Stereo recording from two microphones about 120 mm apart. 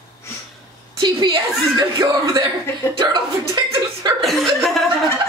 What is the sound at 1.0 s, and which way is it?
Speech, 40° right (ahead or behind).